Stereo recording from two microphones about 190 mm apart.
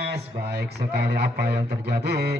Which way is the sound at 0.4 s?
60° right (ahead or behind).